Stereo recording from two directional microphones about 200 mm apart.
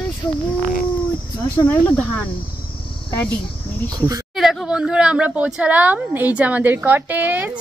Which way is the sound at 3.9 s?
20° right (ahead or behind).